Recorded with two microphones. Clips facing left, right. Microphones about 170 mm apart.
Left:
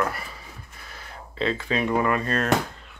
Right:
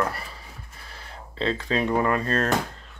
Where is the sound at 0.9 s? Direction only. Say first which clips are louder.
Left 1 dB; 30° right (ahead or behind).